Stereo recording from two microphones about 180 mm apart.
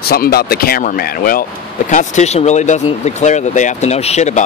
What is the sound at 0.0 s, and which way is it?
Speech, 55° left (ahead or behind).